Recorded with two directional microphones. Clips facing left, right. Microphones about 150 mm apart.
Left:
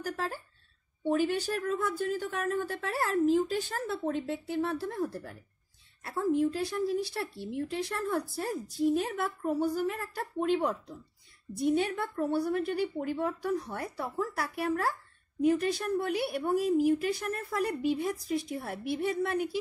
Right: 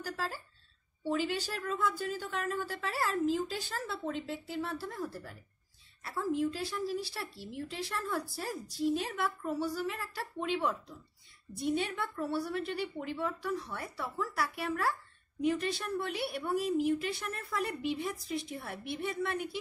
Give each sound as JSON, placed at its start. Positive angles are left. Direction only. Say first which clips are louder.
{"t": 0.0, "sound": "a woman's voice", "louder": "left 3 dB", "side_deg": 55}